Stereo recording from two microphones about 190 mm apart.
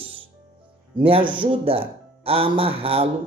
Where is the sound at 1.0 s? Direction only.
30° right (ahead or behind).